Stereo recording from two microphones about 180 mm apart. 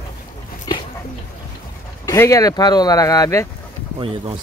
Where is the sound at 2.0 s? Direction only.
15° left (ahead or behind).